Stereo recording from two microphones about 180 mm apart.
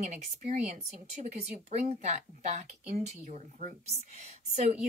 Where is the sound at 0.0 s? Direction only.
40° right (ahead or behind).